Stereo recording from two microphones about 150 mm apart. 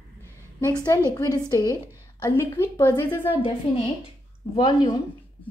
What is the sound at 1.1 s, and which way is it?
A woman's voice, 25° left (ahead or behind).